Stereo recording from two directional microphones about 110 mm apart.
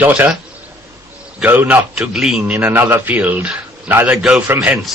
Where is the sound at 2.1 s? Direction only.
5° right (ahead or behind).